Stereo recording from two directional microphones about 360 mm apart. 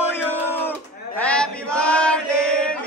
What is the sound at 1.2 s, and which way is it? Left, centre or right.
Chant, centre.